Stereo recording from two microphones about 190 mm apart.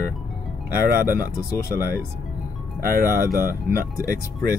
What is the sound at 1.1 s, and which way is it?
Speech, 15° left (ahead or behind).